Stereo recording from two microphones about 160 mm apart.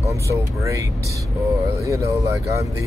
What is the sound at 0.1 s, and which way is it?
Speech, 20° right (ahead or behind).